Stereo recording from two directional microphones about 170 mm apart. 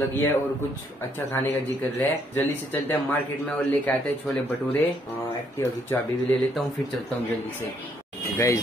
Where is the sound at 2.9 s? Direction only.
10° left (ahead or behind).